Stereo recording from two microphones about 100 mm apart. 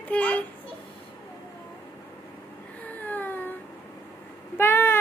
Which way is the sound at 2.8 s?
15° left (ahead or behind).